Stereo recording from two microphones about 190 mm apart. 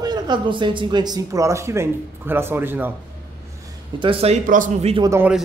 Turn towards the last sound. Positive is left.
turn(degrees=-10)  # may be behind; listen again after turning